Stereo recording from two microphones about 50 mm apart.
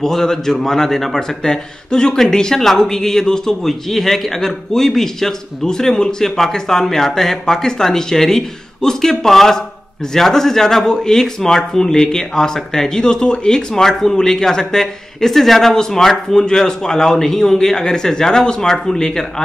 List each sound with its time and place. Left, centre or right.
0.0 s a man's voice: centre